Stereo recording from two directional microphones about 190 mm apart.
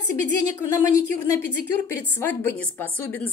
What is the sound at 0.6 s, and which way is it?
Speech, 15° left (ahead or behind).